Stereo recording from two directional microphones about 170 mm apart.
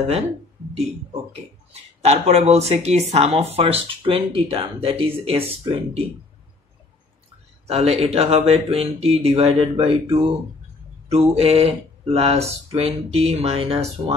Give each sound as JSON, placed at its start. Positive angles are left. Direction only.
{"t": 1.7, "sound": "speech", "side_deg": -40}
{"t": 7.6, "sound": "speech", "side_deg": -35}